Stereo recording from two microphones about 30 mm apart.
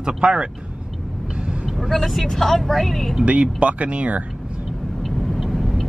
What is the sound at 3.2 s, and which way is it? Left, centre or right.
Speech, right.